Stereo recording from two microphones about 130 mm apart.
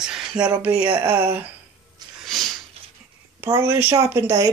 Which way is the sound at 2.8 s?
50° right (ahead or behind).